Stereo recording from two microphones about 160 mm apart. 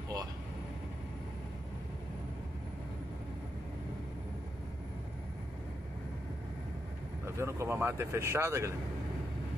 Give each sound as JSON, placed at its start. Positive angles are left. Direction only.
{"t": 7.3, "sound": "speech", "side_deg": -15}